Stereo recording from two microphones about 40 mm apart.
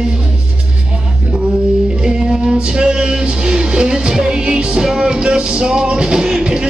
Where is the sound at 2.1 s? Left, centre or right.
Centre.